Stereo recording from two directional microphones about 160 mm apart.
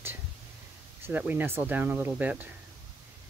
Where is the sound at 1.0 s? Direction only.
10° right (ahead or behind).